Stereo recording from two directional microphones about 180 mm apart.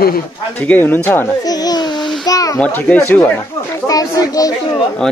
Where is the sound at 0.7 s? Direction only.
10° left (ahead or behind).